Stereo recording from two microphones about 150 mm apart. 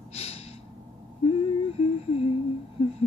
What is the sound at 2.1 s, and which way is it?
Humming, 40° left (ahead or behind).